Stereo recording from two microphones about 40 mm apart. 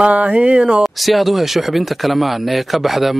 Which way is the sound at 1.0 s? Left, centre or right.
Centre.